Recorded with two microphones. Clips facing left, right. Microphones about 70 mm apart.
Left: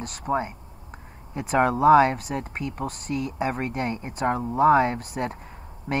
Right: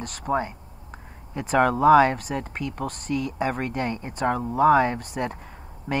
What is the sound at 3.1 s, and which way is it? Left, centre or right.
Speech, left.